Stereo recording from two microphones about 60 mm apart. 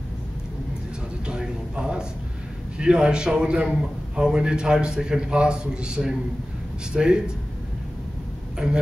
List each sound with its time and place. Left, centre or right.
1.2 s a sound: centre
2.8 s a man's voice: centre
8.6 s a man's voice: centre